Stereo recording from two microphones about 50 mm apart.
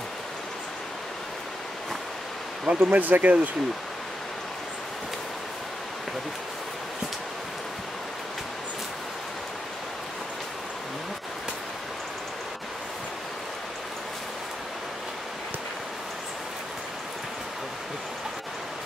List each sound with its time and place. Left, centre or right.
2.6 s speech: right